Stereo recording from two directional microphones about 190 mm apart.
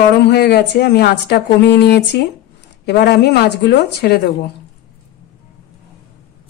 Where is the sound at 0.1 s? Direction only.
60° left (ahead or behind).